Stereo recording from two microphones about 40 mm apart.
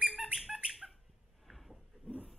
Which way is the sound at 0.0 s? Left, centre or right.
Right.